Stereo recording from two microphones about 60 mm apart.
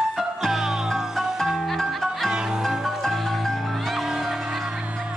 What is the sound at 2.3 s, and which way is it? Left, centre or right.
Music, centre.